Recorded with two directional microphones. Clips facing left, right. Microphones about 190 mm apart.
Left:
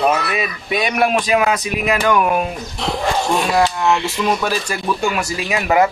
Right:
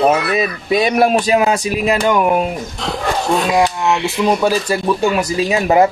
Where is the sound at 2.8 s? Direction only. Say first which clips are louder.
Left 2 dB; centre (ahead or behind).